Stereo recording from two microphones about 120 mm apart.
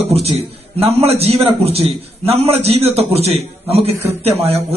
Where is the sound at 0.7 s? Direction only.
60° right (ahead or behind).